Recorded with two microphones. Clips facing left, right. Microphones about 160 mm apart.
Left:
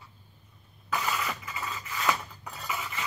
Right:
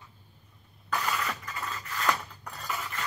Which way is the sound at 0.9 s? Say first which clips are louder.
Even; 5° left (ahead or behind).